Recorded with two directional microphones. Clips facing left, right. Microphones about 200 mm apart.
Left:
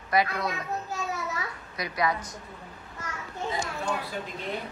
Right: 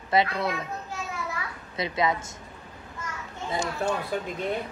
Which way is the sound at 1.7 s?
25° right (ahead or behind).